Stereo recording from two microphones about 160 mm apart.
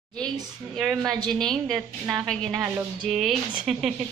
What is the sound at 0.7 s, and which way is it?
Speech, centre (ahead or behind).